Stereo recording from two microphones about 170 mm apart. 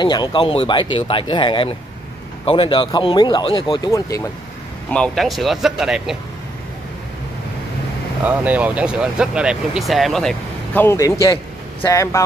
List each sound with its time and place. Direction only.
0.0 s speech: 25° left (ahead or behind)
3.9 s speech: 15° left (ahead or behind)
4.9 s speech: 5° left (ahead or behind)
8.3 s speech: 10° right (ahead or behind); by 12.2 s 15° left (ahead or behind)